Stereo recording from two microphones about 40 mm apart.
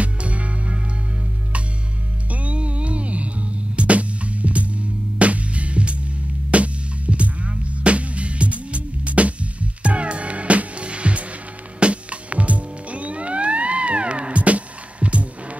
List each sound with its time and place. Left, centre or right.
0.0 s music: right
2.3 s music: right